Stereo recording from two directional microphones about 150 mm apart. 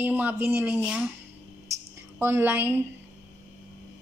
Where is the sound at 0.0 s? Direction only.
10° right (ahead or behind).